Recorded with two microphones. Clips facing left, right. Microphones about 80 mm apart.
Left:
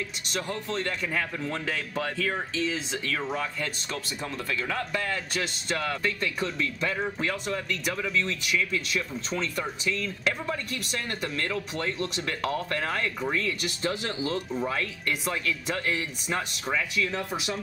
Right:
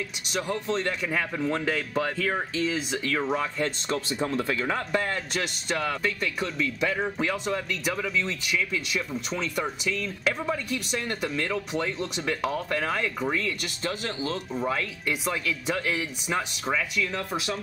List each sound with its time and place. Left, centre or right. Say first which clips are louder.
0.3 s speech: right 4 dB; centre
0.7 s a man's voice: right 4 dB; right
1.0 s speech: right 3 dB; centre
4.6 s a man's voice: right 3 dB; right
5.7 s speech: right 2 dB; centre